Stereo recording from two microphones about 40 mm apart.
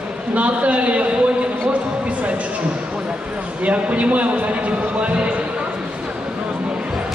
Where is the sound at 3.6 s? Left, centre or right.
Right.